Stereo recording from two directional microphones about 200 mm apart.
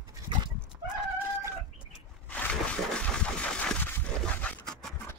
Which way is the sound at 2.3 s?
5° left (ahead or behind).